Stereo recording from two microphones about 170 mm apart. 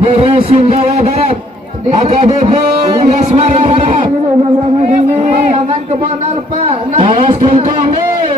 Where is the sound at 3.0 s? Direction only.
40° right (ahead or behind).